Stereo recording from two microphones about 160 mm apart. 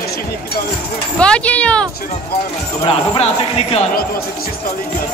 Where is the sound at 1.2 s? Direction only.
5° left (ahead or behind).